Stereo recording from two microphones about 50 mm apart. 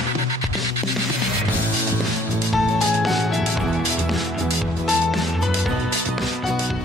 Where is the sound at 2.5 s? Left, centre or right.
Centre.